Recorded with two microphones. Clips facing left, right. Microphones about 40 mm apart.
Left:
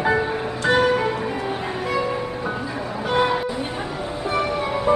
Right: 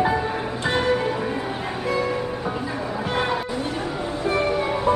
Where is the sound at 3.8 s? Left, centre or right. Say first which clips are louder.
Right 1 dB; centre.